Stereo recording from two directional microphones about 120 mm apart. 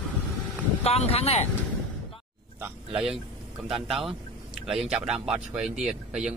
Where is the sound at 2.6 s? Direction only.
10° right (ahead or behind).